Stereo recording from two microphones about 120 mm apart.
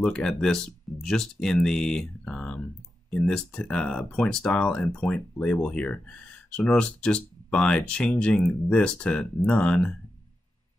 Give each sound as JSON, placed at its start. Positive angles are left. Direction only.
{"t": 0.0, "sound": "speech", "side_deg": 5}